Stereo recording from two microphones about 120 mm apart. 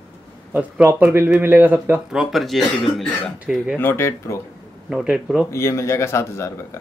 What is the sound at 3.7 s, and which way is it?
Speech, 20° left (ahead or behind).